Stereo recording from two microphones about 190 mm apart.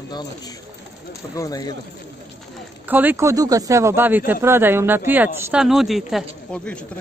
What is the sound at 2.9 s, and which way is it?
Speech, 10° right (ahead or behind).